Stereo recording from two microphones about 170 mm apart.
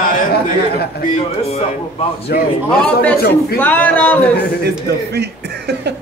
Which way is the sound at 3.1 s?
65° left (ahead or behind).